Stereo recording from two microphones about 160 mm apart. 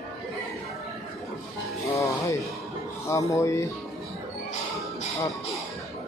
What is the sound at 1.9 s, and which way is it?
Music, 20° left (ahead or behind).